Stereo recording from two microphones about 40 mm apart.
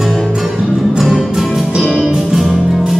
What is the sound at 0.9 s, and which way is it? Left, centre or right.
Music, centre.